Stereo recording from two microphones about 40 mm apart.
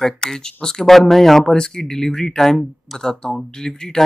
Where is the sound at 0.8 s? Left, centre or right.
Centre.